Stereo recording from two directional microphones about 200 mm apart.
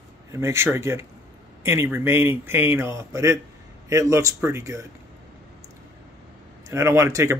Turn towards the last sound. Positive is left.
turn(degrees=-15)  # may be behind; listen again after turning